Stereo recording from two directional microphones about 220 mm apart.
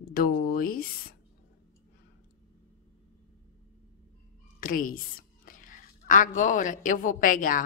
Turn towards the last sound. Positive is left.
turn(degrees=40)  # may be behind; listen again after turning